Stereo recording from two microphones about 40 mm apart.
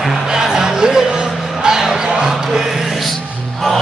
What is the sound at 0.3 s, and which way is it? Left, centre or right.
Music, centre.